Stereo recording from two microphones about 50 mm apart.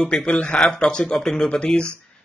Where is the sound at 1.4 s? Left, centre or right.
Left.